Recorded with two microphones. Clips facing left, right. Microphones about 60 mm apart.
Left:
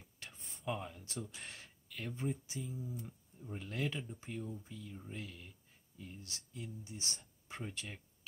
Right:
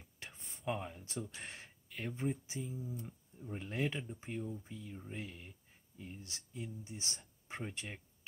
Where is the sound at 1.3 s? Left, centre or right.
Right.